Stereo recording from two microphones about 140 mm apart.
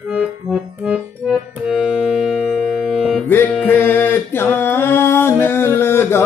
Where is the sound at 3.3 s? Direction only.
15° left (ahead or behind).